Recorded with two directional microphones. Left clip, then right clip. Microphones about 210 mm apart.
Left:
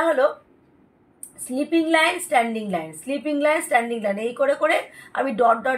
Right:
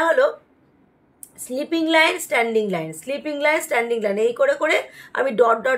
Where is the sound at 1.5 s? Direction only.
45° right (ahead or behind).